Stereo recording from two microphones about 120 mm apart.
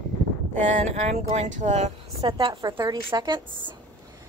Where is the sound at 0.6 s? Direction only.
70° right (ahead or behind).